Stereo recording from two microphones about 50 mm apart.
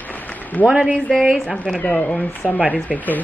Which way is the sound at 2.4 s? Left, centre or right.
Left.